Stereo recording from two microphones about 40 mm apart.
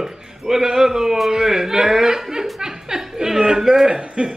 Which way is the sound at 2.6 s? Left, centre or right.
Centre.